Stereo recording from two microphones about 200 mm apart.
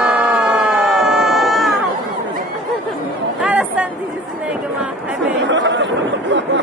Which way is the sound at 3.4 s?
5° right (ahead or behind).